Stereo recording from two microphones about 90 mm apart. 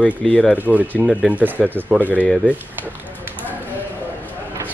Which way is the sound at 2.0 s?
20° left (ahead or behind).